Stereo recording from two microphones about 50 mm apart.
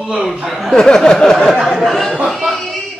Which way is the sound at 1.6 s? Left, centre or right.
Centre.